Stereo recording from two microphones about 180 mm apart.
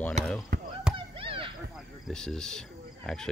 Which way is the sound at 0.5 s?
50° right (ahead or behind).